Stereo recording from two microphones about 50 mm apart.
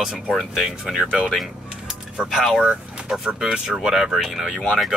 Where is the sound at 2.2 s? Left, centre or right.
Centre.